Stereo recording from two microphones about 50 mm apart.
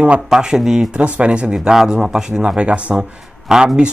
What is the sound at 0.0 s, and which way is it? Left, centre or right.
Speech, centre.